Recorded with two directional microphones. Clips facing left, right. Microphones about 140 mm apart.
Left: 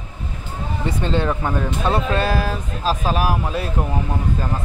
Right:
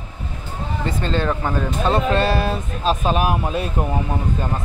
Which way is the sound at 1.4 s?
5° left (ahead or behind).